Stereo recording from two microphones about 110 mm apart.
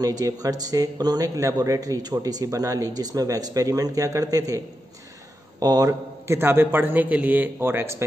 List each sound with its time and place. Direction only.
0.0 s speech: 35° right (ahead or behind)
5.6 s a man's voice: 35° right (ahead or behind)